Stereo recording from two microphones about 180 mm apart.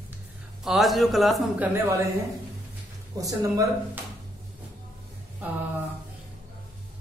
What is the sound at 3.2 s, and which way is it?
Speech, 20° right (ahead or behind).